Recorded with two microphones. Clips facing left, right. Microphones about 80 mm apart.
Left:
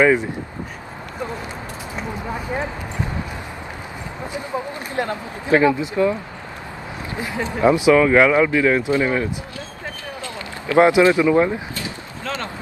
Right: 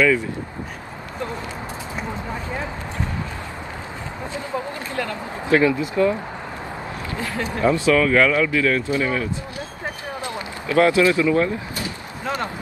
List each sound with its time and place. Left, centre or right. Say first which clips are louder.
0.0 s speech: left 3 dB; left
4.3 s speech: left 1 dB; centre
7.6 s speech: left 4 dB; centre
10.8 s speech: left 3 dB; left